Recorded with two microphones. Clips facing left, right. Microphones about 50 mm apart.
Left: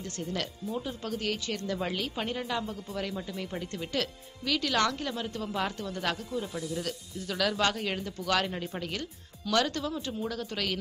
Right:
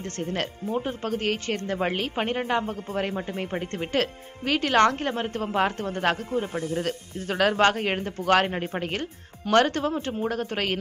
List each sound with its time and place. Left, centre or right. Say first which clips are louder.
0.0 s speech: right 5 dB; right